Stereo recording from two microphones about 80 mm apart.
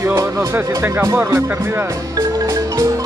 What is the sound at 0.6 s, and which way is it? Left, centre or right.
Speech, right.